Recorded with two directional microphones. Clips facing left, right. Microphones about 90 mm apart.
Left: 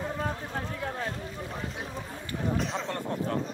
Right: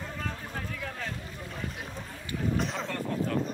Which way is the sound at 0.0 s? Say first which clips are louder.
Left 5 dB; 25° left (ahead or behind).